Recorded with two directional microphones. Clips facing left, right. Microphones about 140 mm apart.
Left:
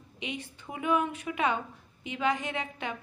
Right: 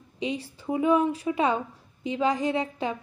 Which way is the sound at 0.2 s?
35° right (ahead or behind).